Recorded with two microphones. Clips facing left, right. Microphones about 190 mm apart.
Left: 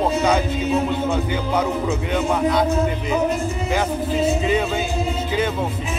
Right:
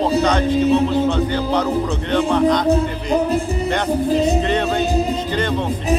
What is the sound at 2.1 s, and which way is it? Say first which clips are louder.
Speech: right 5 dB; 5° left (ahead or behind).